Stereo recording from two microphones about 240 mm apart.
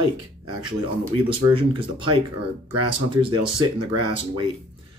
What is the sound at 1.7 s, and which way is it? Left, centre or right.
Speech, right.